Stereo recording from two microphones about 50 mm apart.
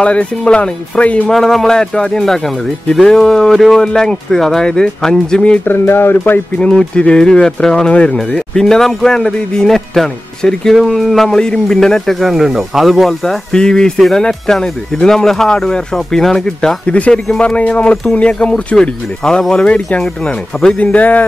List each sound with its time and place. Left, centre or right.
0.0 s speech: left
1.3 s speech: centre
5.7 s speech: left
6.7 s speech: centre
7.9 s speech: left
8.5 s speech: centre
13.2 s speech: centre
16.8 s speech: left
20.2 s speech: left